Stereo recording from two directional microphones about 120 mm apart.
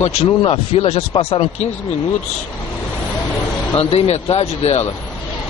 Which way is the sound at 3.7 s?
55° left (ahead or behind).